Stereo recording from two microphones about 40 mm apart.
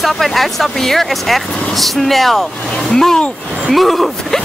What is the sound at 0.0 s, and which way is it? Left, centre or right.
Speech, centre.